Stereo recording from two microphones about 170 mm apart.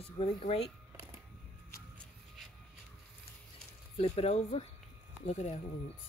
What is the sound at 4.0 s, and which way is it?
Speech, 40° left (ahead or behind).